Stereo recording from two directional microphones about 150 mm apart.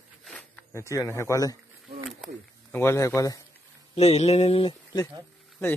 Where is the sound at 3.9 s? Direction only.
45° left (ahead or behind).